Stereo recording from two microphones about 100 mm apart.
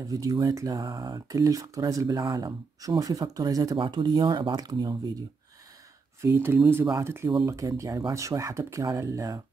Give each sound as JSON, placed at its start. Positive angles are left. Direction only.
{"t": 0.0, "sound": "speech", "side_deg": -35}
{"t": 3.7, "sound": "speech", "side_deg": -55}
{"t": 6.2, "sound": "speech", "side_deg": -25}